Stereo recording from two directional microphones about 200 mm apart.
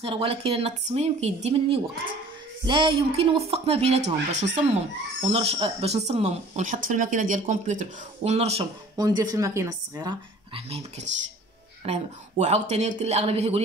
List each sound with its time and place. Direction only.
0.0 s a woman's voice: 30° right (ahead or behind)
8.9 s a woman's voice: 20° right (ahead or behind)